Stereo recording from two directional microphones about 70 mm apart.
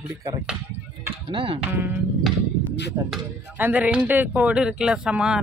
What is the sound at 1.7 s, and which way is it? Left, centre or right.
Speech, right.